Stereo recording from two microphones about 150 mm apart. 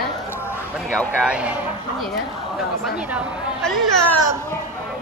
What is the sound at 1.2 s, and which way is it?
Speech, 5° right (ahead or behind).